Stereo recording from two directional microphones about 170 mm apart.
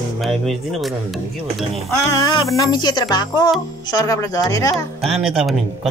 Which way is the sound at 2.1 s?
20° left (ahead or behind).